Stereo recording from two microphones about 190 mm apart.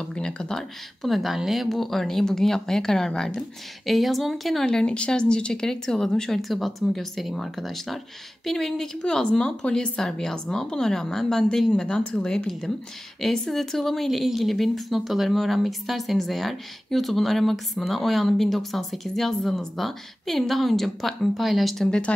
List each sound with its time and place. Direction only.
0.0 s speech: 5° left (ahead or behind)